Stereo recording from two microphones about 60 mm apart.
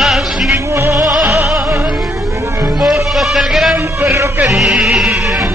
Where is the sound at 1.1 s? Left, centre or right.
Centre.